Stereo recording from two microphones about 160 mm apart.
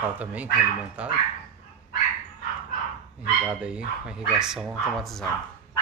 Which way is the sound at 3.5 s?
5° right (ahead or behind).